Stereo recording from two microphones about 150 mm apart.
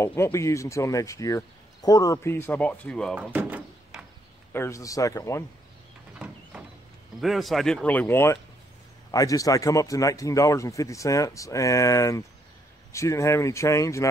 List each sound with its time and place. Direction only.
0.0 s speech: 15° left (ahead or behind)
3.2 s door: 10° right (ahead or behind)
4.5 s speech: 15° left (ahead or behind)
6.1 s a sound: 5° right (ahead or behind)
7.2 s speech: centre (ahead or behind); by 14.0 s 20° left (ahead or behind)